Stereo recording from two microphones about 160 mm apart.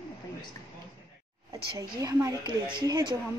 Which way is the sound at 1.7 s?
20° right (ahead or behind).